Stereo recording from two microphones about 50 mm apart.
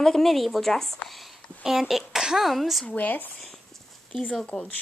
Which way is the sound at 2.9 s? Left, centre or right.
Left.